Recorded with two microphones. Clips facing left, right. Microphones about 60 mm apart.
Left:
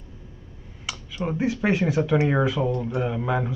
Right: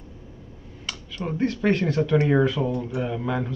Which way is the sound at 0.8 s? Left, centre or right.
Centre.